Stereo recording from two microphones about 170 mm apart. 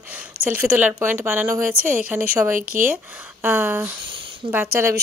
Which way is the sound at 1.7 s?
55° right (ahead or behind).